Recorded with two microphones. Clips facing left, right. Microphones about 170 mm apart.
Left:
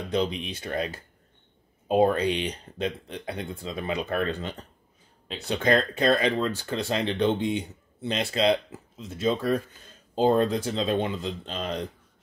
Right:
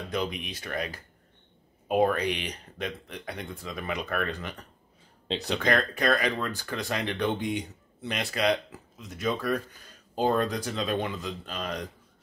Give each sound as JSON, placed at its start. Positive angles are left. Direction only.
{"t": 0.1, "sound": "speech", "side_deg": 30}